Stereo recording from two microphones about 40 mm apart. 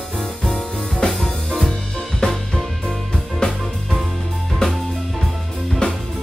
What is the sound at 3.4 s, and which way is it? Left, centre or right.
Music, left.